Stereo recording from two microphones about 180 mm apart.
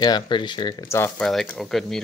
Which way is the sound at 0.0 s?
25° left (ahead or behind).